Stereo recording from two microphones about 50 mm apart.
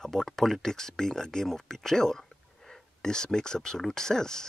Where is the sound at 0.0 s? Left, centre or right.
Centre.